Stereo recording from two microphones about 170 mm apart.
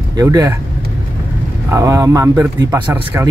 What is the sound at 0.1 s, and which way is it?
Speech, 20° right (ahead or behind).